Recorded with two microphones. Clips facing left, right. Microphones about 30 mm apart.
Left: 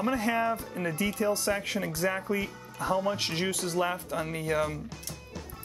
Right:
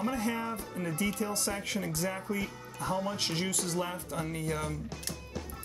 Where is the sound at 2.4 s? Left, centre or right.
Centre.